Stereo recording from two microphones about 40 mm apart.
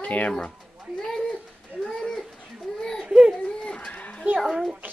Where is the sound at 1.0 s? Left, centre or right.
Centre.